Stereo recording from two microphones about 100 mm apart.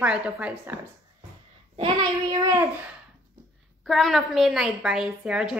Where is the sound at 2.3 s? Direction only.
35° right (ahead or behind).